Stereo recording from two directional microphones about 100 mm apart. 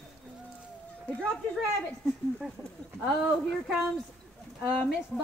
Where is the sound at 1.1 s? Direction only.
10° left (ahead or behind).